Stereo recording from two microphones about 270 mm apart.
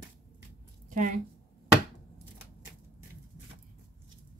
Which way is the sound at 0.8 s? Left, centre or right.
Right.